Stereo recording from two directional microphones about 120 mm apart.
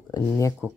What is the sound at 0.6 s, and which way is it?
Speech, 15° right (ahead or behind).